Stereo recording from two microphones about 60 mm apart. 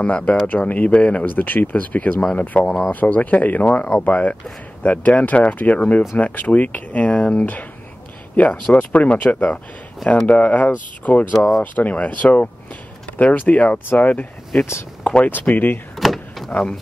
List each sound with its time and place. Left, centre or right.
0.0 s speech: left
11.3 s speech: centre
11.6 s speech: left
15.2 s speech: left
16.0 s power windows: centre
16.4 s speech: centre